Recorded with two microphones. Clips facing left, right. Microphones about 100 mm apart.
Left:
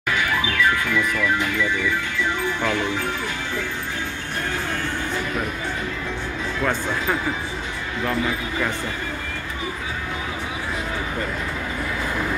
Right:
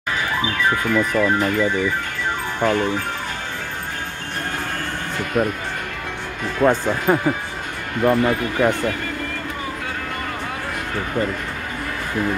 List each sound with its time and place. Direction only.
0.1 s speech: 35° right (ahead or behind)
6.6 s speech: 35° right (ahead or behind)
8.0 s speech: 55° right (ahead or behind)